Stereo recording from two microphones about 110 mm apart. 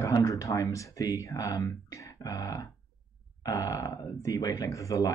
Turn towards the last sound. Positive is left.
turn(degrees=30)  # may be behind; listen again after turning